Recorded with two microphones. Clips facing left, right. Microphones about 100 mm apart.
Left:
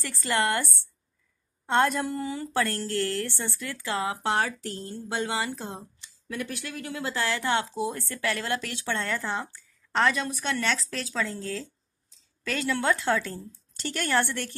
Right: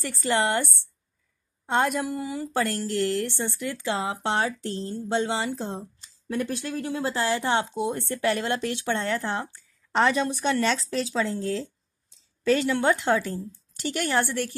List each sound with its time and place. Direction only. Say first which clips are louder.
0.0 s a woman's voice: right 2 dB; 25° right (ahead or behind)
1.7 s a woman's voice: even; 10° right (ahead or behind)